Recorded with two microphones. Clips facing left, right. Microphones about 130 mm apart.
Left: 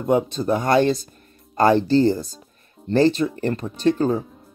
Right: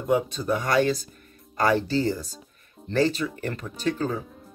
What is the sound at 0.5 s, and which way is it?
Speech, 25° left (ahead or behind).